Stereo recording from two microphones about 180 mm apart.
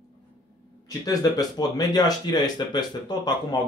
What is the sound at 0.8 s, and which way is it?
Speech, 20° left (ahead or behind).